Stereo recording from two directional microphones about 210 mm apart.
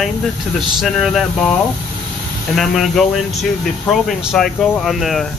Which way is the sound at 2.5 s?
Centre (ahead or behind).